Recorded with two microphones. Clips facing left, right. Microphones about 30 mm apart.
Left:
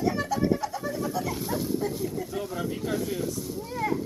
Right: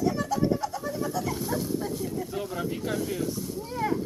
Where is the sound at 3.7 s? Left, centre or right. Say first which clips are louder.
Even; centre.